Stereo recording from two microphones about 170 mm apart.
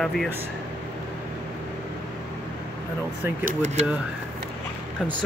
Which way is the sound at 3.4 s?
45° right (ahead or behind).